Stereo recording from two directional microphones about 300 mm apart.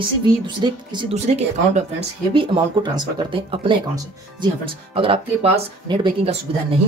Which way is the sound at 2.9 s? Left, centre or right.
Centre.